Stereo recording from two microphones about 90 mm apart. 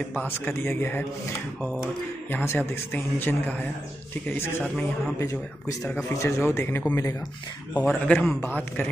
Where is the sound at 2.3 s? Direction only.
20° left (ahead or behind).